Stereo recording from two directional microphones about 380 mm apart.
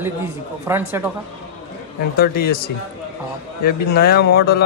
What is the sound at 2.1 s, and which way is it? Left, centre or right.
Mantra, left.